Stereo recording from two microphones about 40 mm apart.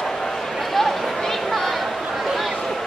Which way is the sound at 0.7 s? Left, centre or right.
Centre.